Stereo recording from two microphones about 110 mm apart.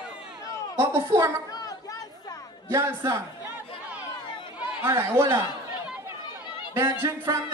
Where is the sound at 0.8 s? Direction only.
20° right (ahead or behind).